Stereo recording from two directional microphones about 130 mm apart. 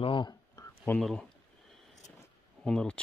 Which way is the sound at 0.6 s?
30° left (ahead or behind).